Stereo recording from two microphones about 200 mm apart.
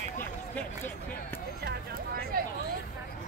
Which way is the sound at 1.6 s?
45° right (ahead or behind).